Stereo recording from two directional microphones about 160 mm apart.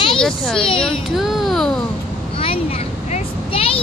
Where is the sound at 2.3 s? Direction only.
35° left (ahead or behind).